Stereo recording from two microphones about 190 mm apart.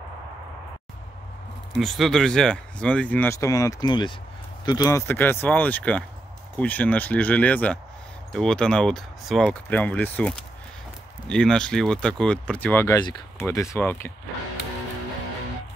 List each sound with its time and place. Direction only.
1.8 s speech: centre (ahead or behind)